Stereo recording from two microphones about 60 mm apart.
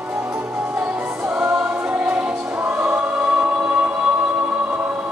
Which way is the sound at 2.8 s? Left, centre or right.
Right.